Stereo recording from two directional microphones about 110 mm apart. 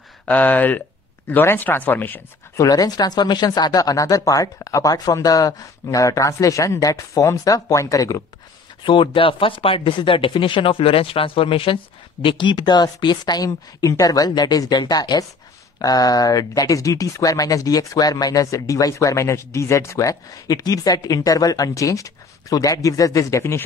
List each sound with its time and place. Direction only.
0.2 s speech: 15° left (ahead or behind)
2.5 s speech: 30° left (ahead or behind)
8.8 s speech: 50° left (ahead or behind); by 23.6 s 25° left (ahead or behind)